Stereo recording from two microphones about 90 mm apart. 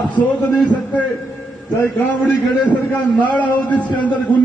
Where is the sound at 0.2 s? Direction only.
15° left (ahead or behind).